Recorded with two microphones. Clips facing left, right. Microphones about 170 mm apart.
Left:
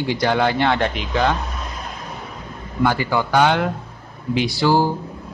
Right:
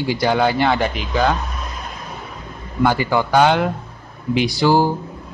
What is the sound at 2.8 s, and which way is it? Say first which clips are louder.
Speech: right 2 dB; 15° right (ahead or behind).